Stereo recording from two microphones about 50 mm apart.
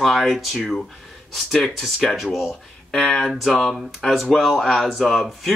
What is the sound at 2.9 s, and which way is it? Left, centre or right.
Speech, centre.